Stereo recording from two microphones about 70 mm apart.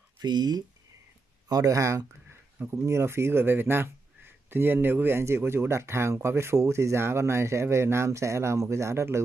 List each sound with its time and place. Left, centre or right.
0.2 s speech: right
1.5 s speech: right
2.8 s speech: right